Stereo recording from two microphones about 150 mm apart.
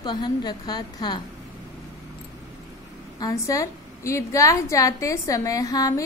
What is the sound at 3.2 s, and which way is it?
A woman's voice, 20° left (ahead or behind).